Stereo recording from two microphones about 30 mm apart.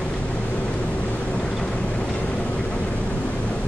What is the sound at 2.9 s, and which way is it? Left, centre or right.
Vehicle, left.